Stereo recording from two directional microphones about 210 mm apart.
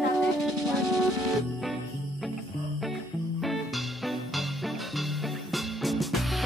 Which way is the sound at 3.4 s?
Centre (ahead or behind).